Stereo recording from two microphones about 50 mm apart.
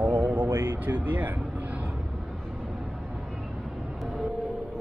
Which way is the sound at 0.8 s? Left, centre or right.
Right.